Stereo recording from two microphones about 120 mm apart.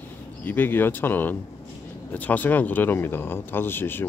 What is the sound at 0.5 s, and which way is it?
Speech, 15° left (ahead or behind).